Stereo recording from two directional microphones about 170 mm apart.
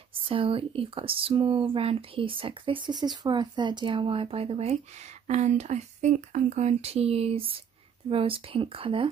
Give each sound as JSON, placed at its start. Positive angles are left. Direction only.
{"t": 0.3, "sound": "speech", "side_deg": -30}